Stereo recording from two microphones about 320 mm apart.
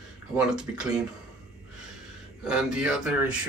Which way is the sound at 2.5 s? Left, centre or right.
Centre.